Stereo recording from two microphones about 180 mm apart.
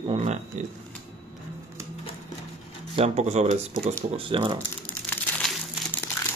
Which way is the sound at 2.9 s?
35° right (ahead or behind).